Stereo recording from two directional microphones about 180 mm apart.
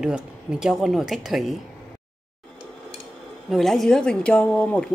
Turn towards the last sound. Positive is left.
turn(degrees=5)  # may be behind; listen again after turning